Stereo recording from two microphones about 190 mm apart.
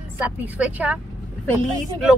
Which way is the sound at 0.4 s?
10° right (ahead or behind).